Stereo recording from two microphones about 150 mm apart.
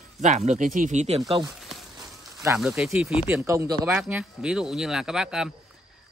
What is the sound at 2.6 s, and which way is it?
Speech, 5° right (ahead or behind).